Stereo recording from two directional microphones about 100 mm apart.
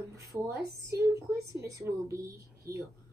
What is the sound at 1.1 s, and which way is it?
A woman's voice, 30° right (ahead or behind).